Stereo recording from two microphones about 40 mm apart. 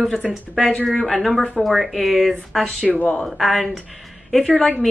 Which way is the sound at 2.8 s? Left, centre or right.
Left.